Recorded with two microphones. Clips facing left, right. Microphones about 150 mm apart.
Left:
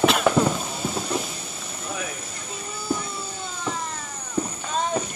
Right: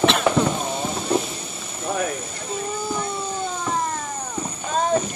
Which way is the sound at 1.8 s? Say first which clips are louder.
Right 8 dB; 50° right (ahead or behind).